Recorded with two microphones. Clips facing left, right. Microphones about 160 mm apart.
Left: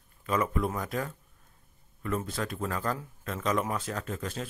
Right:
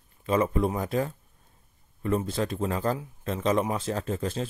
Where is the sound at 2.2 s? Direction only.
25° right (ahead or behind).